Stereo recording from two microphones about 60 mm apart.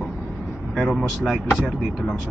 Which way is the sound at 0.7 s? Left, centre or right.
Centre.